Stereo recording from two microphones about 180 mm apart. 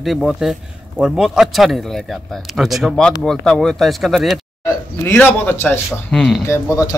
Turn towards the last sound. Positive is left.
turn(degrees=20)  # may be behind; listen again after turning